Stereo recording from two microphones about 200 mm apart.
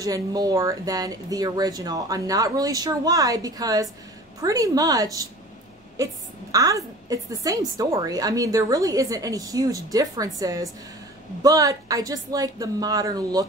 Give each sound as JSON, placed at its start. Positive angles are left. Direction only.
{"t": 0.0, "sound": "a woman's voice", "side_deg": -20}